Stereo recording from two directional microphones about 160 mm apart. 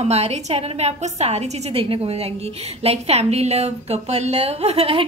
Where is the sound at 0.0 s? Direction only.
40° right (ahead or behind).